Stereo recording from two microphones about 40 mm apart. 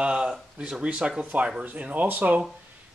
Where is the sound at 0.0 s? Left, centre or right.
Right.